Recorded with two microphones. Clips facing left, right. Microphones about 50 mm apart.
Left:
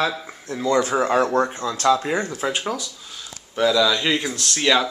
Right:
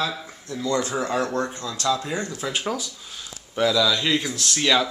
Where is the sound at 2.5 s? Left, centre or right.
Centre.